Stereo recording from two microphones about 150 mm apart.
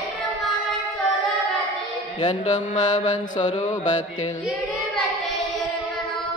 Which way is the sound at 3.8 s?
55° left (ahead or behind).